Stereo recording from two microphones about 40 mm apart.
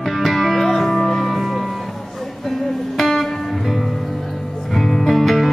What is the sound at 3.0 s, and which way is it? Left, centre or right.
Music, centre.